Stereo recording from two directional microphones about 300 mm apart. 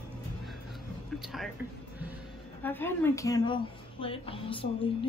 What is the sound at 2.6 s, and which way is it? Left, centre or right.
A woman's voice, centre.